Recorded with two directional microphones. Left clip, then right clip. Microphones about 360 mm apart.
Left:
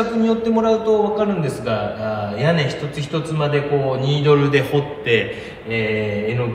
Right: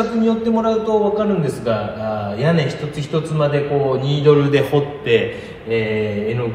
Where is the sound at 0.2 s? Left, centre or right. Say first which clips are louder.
Left 1 dB; centre.